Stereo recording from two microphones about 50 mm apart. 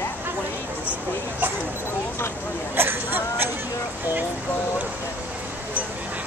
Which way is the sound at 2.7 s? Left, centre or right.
Right.